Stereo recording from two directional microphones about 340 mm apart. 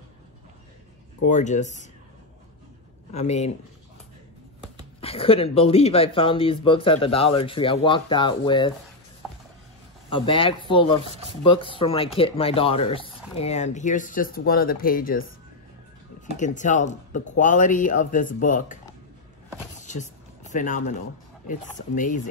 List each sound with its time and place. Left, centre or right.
1.2 s speech: left
3.1 s speech: centre
5.0 s speech: centre
10.0 s speech: centre
16.3 s speech: left
19.8 s a sound: left
21.5 s speech: left